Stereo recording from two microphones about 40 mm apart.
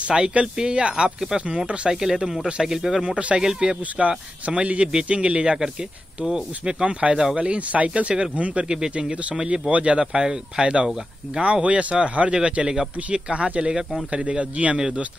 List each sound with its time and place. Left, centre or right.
0.1 s speech: centre
0.6 s a man's voice: right
10.1 s a man's voice: centre
12.6 s a man's voice: centre